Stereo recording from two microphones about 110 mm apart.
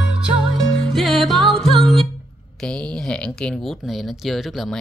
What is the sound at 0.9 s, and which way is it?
Music, centre (ahead or behind).